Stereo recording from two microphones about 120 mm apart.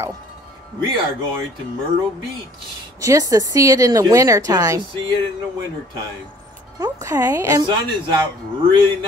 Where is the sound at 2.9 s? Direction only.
25° right (ahead or behind).